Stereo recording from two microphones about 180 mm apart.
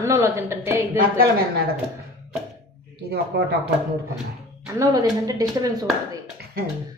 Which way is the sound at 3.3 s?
65° right (ahead or behind).